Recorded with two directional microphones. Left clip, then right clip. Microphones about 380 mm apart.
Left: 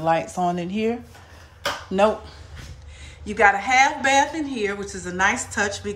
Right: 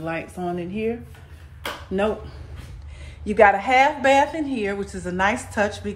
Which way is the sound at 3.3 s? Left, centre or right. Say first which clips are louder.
Right 2 dB; centre.